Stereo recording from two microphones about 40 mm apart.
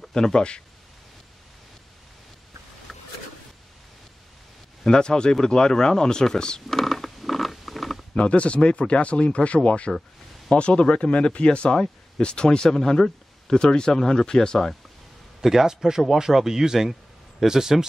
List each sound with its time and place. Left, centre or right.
0.0 s speech: centre
2.9 s a sound: centre
4.8 s speech: centre
6.7 s a sound: centre
8.1 s speech: left
15.4 s speech: centre